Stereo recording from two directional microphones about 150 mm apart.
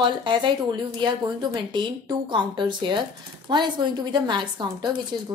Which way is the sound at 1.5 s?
30° right (ahead or behind).